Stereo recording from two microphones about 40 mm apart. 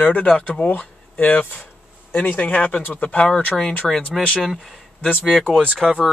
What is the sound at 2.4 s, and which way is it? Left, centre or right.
Speech, left.